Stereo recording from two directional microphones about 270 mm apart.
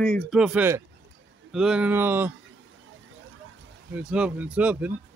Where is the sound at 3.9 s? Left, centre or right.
Centre.